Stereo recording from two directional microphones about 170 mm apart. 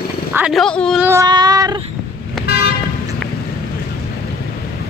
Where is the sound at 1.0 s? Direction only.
15° right (ahead or behind).